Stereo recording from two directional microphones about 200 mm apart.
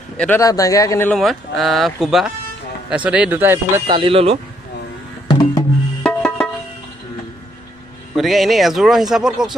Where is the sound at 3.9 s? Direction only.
25° right (ahead or behind).